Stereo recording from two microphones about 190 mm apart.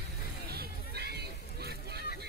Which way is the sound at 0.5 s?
55° right (ahead or behind).